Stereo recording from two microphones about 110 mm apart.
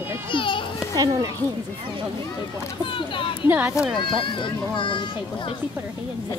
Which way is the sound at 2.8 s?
50° left (ahead or behind).